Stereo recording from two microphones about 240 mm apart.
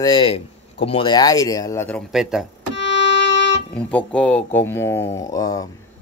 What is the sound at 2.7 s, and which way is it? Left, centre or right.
Music, left.